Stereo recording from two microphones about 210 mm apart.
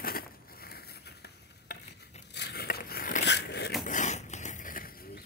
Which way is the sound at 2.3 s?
50° left (ahead or behind).